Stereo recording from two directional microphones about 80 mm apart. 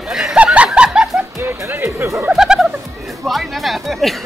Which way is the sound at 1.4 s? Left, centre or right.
Right.